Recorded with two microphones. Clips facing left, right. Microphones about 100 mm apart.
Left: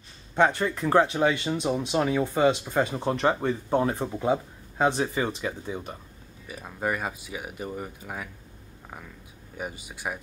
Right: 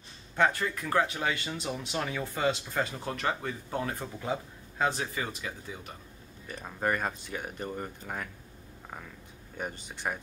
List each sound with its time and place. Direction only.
0.4 s speech: 25° left (ahead or behind)
6.4 s speech: 5° left (ahead or behind)
9.6 s speech: 5° left (ahead or behind)